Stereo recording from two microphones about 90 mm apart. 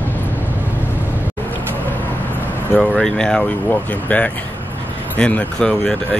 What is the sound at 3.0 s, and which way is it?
Speech, 10° left (ahead or behind).